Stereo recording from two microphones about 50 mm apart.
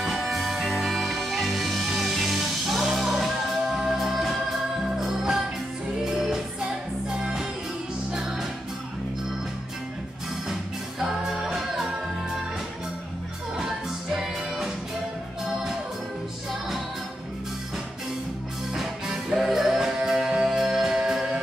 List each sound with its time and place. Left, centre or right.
0.0 s music: centre
11.0 s music: centre
13.6 s music: centre
18.8 s music: centre